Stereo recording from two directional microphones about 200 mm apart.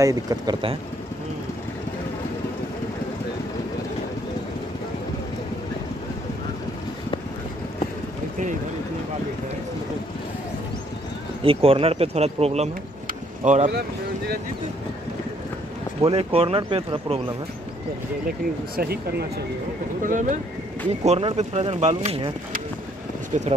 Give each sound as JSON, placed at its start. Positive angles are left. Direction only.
{"t": 0.0, "sound": "speech", "side_deg": -20}
{"t": 11.4, "sound": "speech", "side_deg": -30}
{"t": 13.0, "sound": "a sound", "side_deg": -35}
{"t": 16.0, "sound": "speech", "side_deg": -30}
{"t": 18.8, "sound": "speech", "side_deg": -50}
{"t": 20.0, "sound": "speech", "side_deg": -40}
{"t": 23.3, "sound": "speech", "side_deg": -35}